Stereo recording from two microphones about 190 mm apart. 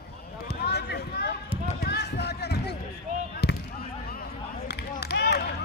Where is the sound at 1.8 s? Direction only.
60° left (ahead or behind).